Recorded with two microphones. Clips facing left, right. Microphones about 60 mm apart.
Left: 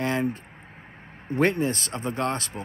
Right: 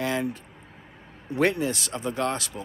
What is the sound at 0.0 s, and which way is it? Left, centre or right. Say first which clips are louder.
Vehicle: left 1 dB; left.